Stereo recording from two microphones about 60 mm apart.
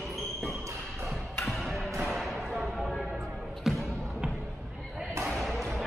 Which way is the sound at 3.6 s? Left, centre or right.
Centre.